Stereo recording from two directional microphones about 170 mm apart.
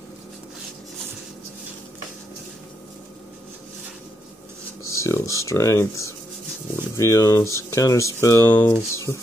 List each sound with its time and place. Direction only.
4.8 s speech: 15° left (ahead or behind)